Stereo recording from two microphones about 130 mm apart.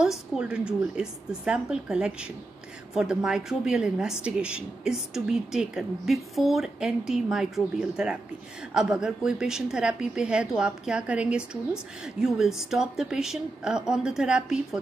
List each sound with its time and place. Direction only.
0.0 s a woman's voice: 5° right (ahead or behind)